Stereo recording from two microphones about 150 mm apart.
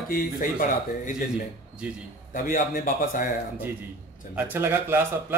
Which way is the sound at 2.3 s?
65° left (ahead or behind).